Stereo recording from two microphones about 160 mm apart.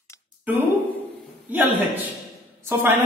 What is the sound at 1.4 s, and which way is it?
Speech, 10° right (ahead or behind).